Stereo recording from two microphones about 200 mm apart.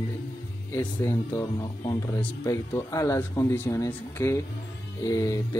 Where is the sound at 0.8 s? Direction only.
10° left (ahead or behind).